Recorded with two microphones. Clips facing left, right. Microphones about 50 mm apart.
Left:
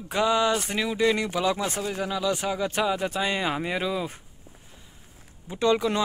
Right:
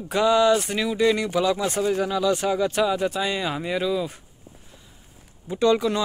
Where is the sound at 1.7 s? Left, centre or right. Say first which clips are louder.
Right 6 dB; centre; by 4.1 s left.